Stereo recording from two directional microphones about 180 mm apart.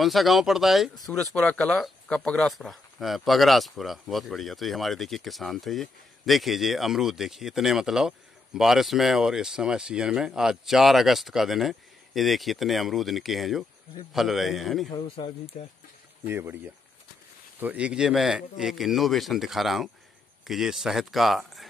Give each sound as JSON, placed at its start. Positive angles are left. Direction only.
{"t": 0.0, "sound": "speech", "side_deg": 0}
{"t": 14.9, "sound": "speech", "side_deg": 25}
{"t": 16.3, "sound": "speech", "side_deg": -10}
{"t": 17.6, "sound": "speech", "side_deg": -10}